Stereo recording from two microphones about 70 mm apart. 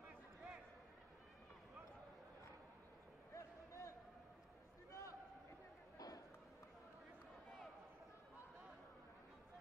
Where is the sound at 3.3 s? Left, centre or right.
Left.